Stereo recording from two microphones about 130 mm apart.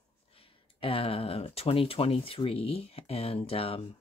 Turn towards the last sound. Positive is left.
turn(degrees=45)  # may be behind; listen again after turning